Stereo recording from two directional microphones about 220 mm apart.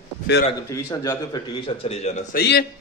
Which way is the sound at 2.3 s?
50° left (ahead or behind).